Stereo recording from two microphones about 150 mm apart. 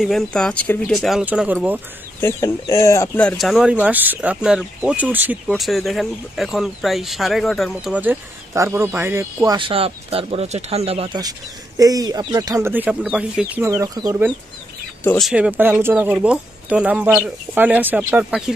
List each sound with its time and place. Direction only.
0.0 s speech: 5° left (ahead or behind)
2.1 s speech: 20° left (ahead or behind)
3.2 s speech: 5° left (ahead or behind)
5.5 s speech: centre (ahead or behind); by 9.6 s 15° right (ahead or behind)
9.6 s speech: 40° right (ahead or behind)
11.8 s speech: 25° right (ahead or behind); by 13.7 s 5° right (ahead or behind)
13.7 s speech: 20° right (ahead or behind)
15.1 s speech: 5° right (ahead or behind)